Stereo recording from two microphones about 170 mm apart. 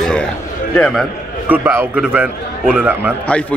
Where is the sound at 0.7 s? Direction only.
5° left (ahead or behind).